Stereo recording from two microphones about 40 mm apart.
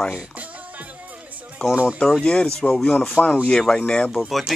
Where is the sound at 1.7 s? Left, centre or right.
Right.